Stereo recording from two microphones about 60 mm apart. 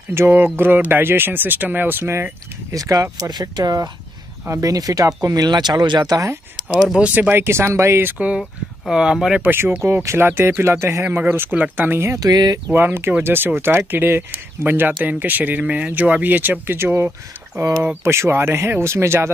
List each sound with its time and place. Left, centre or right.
0.3 s speech: right
2.7 s speech: right
4.5 s speech: right
6.7 s speech: centre
7.2 s speech: right
7.4 s speech: right
8.1 s speech: right
8.9 s speech: centre
9.4 s speech: right
11.1 s speech: right
12.2 s speech: right
12.7 s speech: right
16.7 s speech: right